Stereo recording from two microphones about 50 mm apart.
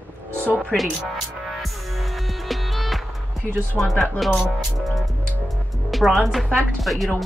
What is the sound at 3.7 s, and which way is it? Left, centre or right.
Speech, centre.